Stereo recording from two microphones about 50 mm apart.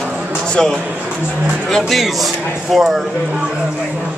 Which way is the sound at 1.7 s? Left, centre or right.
Centre.